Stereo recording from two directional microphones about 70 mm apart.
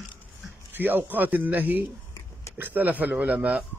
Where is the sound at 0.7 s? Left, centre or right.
Right.